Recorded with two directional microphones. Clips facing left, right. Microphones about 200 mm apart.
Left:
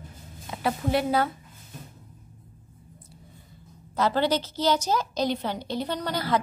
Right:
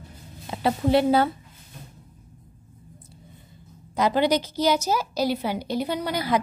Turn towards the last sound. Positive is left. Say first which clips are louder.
# right 2 dB
turn(degrees=-10)  # may be behind; listen again after turning